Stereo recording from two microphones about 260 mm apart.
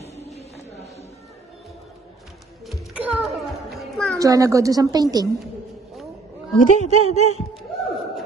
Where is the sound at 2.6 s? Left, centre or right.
Centre.